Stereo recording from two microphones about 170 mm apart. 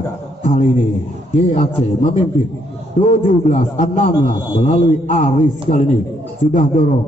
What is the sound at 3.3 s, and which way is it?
A man's voice, 45° left (ahead or behind).